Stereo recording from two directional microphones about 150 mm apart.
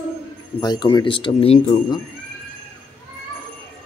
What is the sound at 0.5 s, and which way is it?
A man's voice, 25° left (ahead or behind).